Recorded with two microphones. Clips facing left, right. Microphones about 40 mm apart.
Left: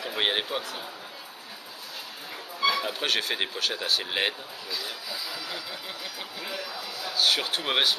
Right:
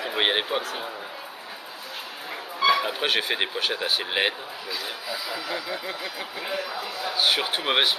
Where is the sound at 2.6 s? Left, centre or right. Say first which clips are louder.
Right 4 dB; centre.